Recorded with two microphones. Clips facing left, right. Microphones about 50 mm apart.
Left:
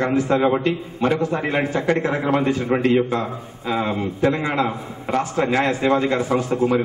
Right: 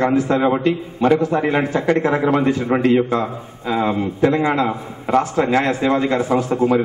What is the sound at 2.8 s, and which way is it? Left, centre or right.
A man's voice, centre.